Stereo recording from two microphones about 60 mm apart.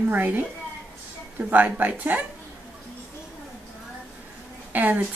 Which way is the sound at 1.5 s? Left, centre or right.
Right.